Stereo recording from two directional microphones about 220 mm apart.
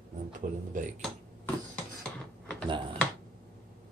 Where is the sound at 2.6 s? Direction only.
20° right (ahead or behind).